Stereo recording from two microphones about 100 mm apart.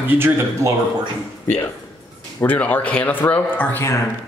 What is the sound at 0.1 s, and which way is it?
Speech, 25° right (ahead or behind).